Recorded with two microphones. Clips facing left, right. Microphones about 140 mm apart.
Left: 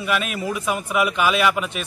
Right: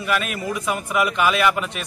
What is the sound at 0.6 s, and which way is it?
Speech, 5° left (ahead or behind).